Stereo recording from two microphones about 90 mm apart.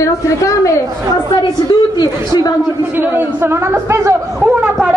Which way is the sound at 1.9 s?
50° left (ahead or behind).